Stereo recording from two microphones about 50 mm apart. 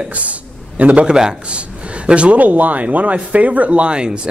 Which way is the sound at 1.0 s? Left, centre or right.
Centre.